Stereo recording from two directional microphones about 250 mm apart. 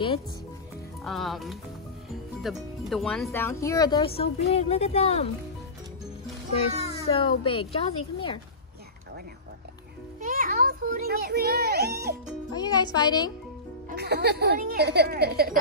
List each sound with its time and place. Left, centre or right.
1.0 s speech: centre; by 5.3 s left
6.7 s a sound: right
7.1 s a woman's voice: left
10.2 s a child's voice: right
12.5 s speech: centre
13.8 s a woman's voice: right